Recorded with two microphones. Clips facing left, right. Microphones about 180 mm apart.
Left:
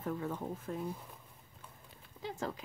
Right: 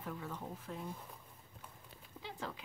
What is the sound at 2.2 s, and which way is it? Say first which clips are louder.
Speech: left 6 dB; 45° left (ahead or behind).